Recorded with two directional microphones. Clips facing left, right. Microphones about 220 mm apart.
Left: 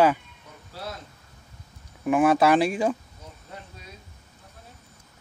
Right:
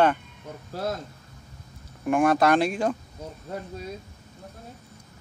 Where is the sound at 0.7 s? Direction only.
45° right (ahead or behind).